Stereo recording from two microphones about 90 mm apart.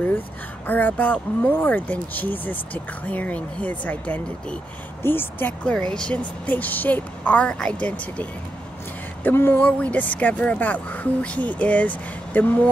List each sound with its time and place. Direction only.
0.7 s speech: 20° left (ahead or behind)